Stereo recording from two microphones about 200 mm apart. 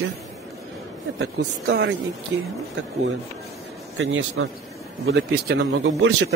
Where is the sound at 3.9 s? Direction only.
90° right.